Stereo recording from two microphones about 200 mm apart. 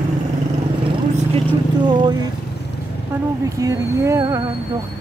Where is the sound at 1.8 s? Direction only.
20° right (ahead or behind).